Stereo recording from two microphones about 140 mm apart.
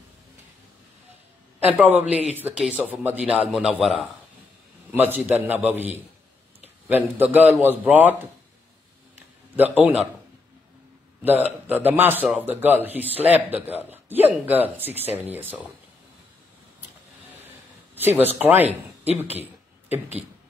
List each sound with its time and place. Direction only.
1.6 s speech: 10° right (ahead or behind)
4.9 s a man's voice: 15° right (ahead or behind)
9.6 s speech: 10° right (ahead or behind)
11.2 s speech: 10° right (ahead or behind)
17.9 s speech: 15° right (ahead or behind)
19.1 s a sound: 15° right (ahead or behind)